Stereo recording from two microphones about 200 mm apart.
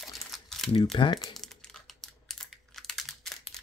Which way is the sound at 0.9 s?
25° left (ahead or behind).